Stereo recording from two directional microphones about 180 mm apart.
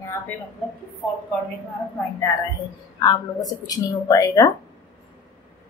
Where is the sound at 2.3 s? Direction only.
20° left (ahead or behind).